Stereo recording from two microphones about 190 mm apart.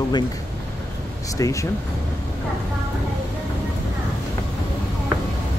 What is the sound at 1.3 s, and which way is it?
Speech, 15° left (ahead or behind).